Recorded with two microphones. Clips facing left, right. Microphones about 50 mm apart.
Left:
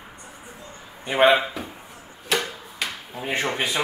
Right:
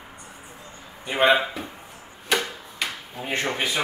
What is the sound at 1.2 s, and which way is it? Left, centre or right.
Speech, centre.